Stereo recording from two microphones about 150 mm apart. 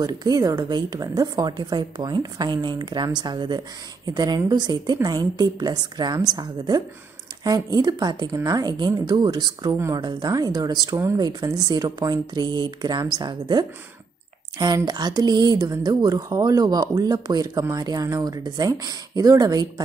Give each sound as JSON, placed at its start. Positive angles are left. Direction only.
{"t": 0.0, "sound": "speech", "side_deg": -25}